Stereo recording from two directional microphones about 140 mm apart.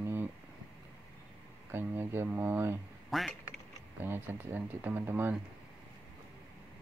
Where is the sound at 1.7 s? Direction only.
15° right (ahead or behind).